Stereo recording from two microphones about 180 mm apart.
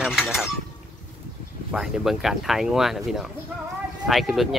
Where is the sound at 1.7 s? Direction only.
5° right (ahead or behind).